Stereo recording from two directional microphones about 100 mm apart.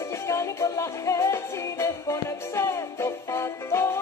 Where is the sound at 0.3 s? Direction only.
30° left (ahead or behind).